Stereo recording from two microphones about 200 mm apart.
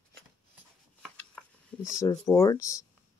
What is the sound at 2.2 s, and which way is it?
Speech, 15° left (ahead or behind).